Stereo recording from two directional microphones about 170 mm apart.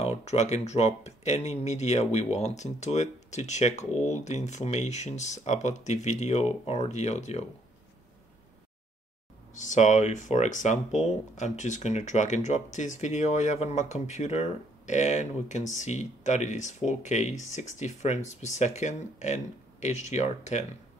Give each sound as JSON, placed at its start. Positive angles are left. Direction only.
{"t": 0.0, "sound": "speech", "side_deg": 40}
{"t": 9.5, "sound": "speech", "side_deg": 45}